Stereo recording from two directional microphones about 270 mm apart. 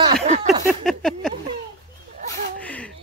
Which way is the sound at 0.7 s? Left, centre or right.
Centre.